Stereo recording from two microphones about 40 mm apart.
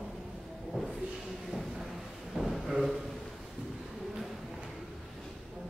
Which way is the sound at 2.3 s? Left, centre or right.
Centre.